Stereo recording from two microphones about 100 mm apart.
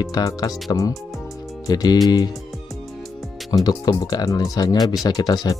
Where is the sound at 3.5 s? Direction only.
45° left (ahead or behind).